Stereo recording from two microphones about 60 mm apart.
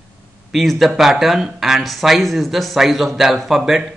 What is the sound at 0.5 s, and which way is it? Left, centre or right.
Speech, centre.